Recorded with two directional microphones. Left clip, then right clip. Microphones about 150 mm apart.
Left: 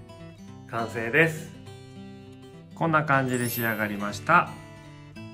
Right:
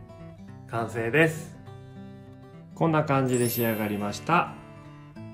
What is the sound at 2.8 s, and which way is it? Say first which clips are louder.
Speech: left 1 dB; 30° right (ahead or behind).